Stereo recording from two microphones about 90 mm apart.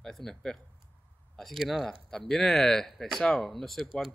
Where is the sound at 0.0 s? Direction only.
5° left (ahead or behind).